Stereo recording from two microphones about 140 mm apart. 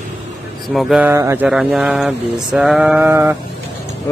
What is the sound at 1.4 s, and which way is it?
A man's voice, 5° right (ahead or behind).